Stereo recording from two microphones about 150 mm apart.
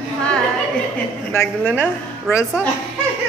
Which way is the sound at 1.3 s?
15° left (ahead or behind).